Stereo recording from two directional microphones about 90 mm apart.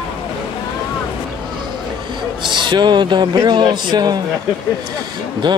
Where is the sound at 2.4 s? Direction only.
60° right (ahead or behind).